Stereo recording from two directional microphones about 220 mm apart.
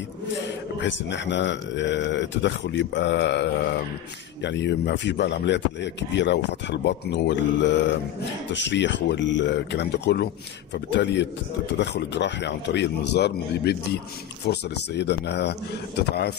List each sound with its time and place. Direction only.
0.7 s a man's voice: 55° left (ahead or behind)